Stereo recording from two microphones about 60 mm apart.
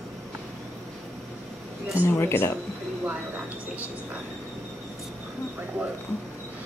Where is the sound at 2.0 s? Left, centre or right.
Left.